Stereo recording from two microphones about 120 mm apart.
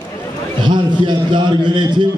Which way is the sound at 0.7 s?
40° right (ahead or behind).